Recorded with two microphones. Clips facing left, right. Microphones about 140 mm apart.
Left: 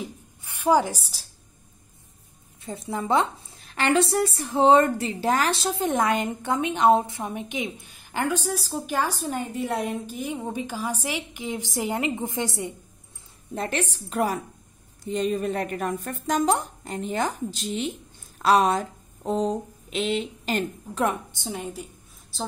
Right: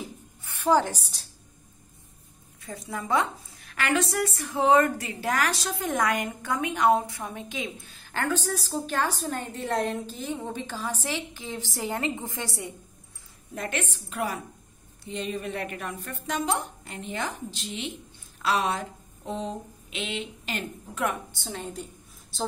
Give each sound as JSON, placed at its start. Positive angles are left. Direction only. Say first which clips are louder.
{"t": 0.4, "sound": "a woman's voice", "louder": "left 2 dB", "side_deg": 15}
{"t": 2.6, "sound": "a woman's voice", "louder": "left 5 dB", "side_deg": 25}
{"t": 13.6, "sound": "a woman's voice", "louder": "left 4 dB", "side_deg": 35}
{"t": 21.3, "sound": "a woman's voice", "louder": "left 3 dB", "side_deg": 15}
{"t": 22.3, "sound": "speech", "louder": "right 1 dB", "side_deg": 0}